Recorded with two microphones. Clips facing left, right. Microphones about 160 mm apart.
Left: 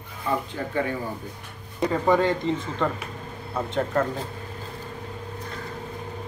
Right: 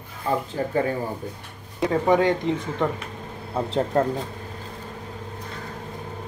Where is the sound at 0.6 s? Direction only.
35° right (ahead or behind).